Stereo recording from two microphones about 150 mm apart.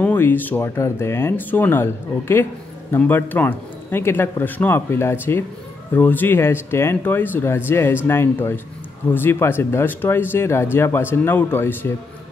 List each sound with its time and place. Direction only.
0.0 s speech: 10° left (ahead or behind)